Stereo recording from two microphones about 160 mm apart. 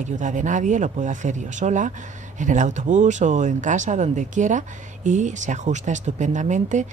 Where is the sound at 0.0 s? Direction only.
50° right (ahead or behind).